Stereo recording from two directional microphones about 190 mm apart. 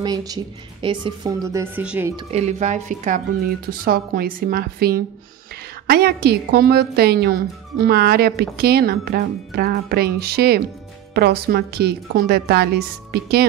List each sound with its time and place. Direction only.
0.0 s a woman's voice: 20° right (ahead or behind)
2.3 s a woman's voice: 35° right (ahead or behind); by 13.5 s 55° right (ahead or behind)